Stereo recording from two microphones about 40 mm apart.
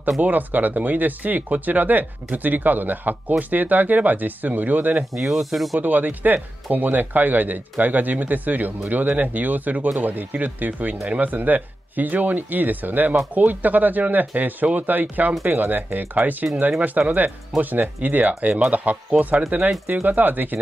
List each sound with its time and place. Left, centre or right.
0.2 s speech: right
5.1 s speech: centre
5.8 s speech: right
17.6 s speech: right